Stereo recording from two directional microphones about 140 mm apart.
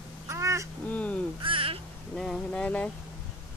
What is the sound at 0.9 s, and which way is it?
Caw, 10° left (ahead or behind).